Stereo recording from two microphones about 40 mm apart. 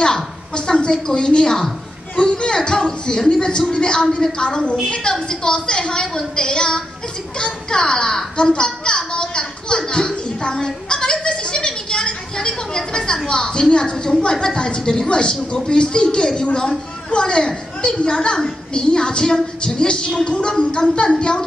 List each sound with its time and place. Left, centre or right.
0.0 s a woman's voice: left